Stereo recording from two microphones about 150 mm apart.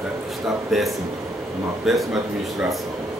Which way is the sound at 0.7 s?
Centre (ahead or behind).